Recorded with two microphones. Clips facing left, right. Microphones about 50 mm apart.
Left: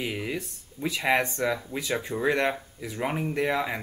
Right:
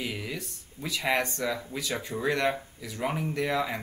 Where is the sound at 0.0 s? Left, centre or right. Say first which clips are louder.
Left 3 dB; left.